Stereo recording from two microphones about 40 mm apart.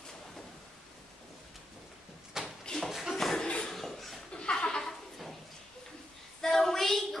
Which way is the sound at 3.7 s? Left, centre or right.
Centre.